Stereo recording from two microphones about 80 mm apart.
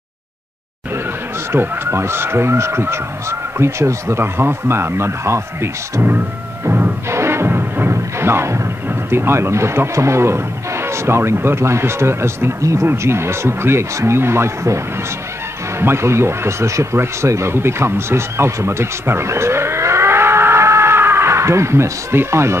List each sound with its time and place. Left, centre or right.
1.5 s speech: right
15.8 s speech: right